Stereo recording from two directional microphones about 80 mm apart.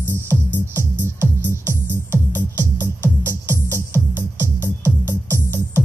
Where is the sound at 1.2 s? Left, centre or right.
Right.